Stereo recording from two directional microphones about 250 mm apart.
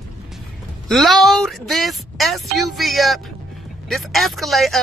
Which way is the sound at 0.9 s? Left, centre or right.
Centre.